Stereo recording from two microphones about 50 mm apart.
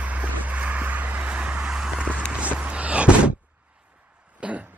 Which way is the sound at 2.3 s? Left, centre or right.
Right.